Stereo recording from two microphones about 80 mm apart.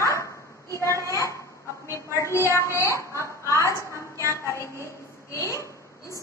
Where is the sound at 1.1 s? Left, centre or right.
Left.